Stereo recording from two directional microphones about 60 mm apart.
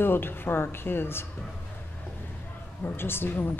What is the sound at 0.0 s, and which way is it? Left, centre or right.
Speech, left.